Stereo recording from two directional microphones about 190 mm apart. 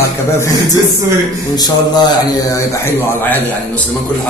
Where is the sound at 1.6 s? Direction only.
20° left (ahead or behind).